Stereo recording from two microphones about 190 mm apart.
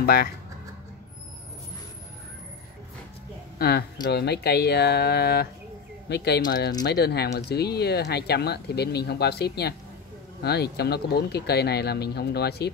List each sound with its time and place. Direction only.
0.0 s speech: 55° left (ahead or behind)
3.5 s speech: 55° left (ahead or behind)